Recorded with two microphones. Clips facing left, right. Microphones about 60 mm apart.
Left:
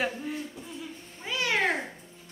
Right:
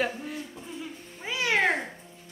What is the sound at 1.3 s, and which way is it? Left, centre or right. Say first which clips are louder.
Cat: right 2 dB; centre.